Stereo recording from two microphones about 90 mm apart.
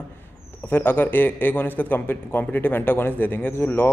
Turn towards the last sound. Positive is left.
turn(degrees=20)  # may be behind; listen again after turning